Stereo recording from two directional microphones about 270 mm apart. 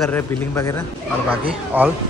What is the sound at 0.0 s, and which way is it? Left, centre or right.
Speech, centre.